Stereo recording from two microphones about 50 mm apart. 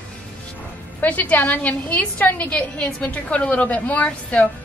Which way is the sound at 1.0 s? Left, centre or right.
Left.